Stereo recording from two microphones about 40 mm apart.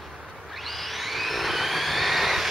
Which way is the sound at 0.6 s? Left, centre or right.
Centre.